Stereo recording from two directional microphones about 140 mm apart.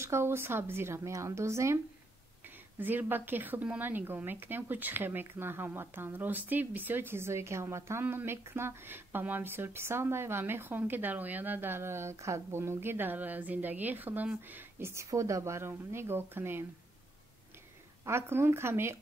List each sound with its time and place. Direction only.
0.0 s a woman's voice: 20° right (ahead or behind)
18.0 s a woman's voice: 15° right (ahead or behind)